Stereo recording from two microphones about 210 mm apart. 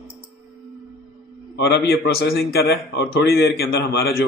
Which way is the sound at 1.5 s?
55° left (ahead or behind).